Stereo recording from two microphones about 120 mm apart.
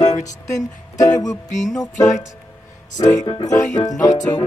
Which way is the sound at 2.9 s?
30° left (ahead or behind).